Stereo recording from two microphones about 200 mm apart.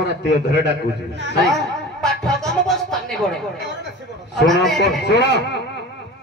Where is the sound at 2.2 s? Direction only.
Centre (ahead or behind).